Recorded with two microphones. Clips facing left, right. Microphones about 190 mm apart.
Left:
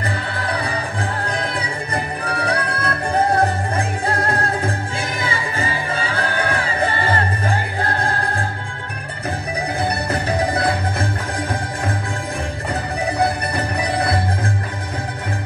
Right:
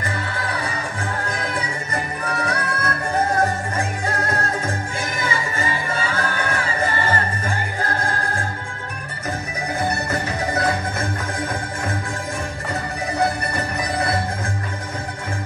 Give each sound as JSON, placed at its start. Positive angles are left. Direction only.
{"t": 1.2, "sound": "music", "side_deg": 35}
{"t": 10.2, "sound": "music", "side_deg": 35}